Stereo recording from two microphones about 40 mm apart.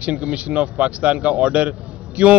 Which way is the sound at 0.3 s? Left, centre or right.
Right.